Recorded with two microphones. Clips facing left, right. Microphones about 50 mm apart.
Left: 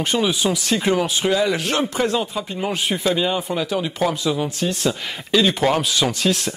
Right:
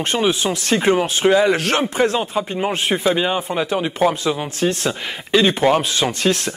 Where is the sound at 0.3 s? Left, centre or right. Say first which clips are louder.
Right 2 dB; right.